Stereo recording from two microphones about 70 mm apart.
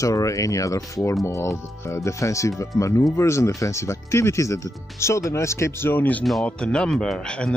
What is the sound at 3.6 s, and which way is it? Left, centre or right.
Speech, left.